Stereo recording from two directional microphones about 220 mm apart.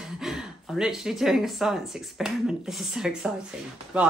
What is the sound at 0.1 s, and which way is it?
A woman's voice, centre (ahead or behind).